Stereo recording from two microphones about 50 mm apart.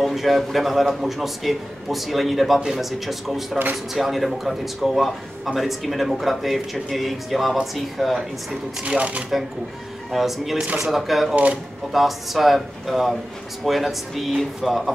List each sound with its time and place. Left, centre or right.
0.0 s speech: centre
8.8 s speech: right
10.1 s speech: centre